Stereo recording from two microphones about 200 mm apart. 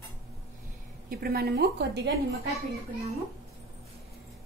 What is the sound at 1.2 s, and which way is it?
Speech, 50° right (ahead or behind).